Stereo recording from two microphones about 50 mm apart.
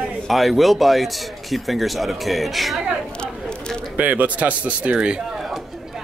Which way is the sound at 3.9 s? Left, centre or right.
Right.